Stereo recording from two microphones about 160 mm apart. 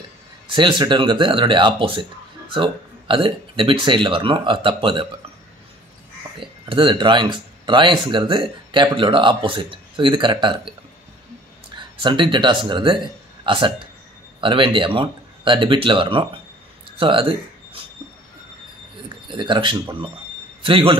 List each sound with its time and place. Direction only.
0.5 s speech: 30° right (ahead or behind)
6.4 s speech: 30° right (ahead or behind)
12.0 s speech: 30° right (ahead or behind)
19.2 s speech: 30° right (ahead or behind)